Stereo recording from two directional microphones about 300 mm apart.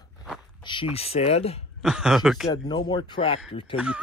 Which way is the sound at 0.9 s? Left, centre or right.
Centre.